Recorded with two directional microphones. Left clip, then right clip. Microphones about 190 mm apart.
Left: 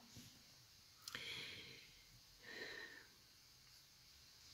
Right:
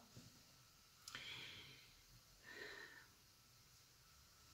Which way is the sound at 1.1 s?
25° left (ahead or behind).